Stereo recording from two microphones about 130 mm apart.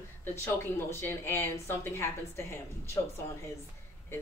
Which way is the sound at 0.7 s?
20° left (ahead or behind).